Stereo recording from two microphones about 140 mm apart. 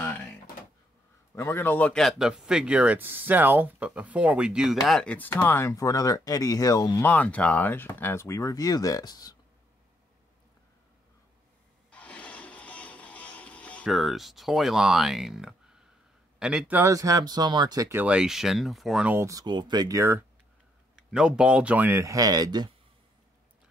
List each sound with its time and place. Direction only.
1.3 s speech: 15° left (ahead or behind); by 4.7 s 5° right (ahead or behind)
4.8 s speech: 5° left (ahead or behind); by 7.1 s 25° left (ahead or behind)
7.1 s speech: 10° left (ahead or behind); by 9.4 s 30° left (ahead or behind)
11.9 s music: 10° left (ahead or behind)
13.9 s speech: centre (ahead or behind)
16.8 s speech: 25° right (ahead or behind)
18.0 s speech: 5° right (ahead or behind)
19.1 s speech: 25° right (ahead or behind)
20.9 s speech: 5° right (ahead or behind); by 22.7 s 30° right (ahead or behind)